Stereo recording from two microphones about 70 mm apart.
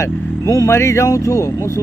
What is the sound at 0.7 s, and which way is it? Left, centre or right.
Speech, left.